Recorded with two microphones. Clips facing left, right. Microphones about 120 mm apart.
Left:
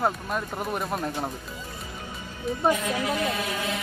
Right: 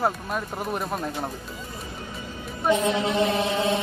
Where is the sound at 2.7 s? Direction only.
25° right (ahead or behind).